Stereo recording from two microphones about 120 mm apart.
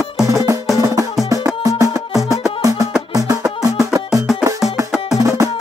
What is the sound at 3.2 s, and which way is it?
Music, 30° right (ahead or behind).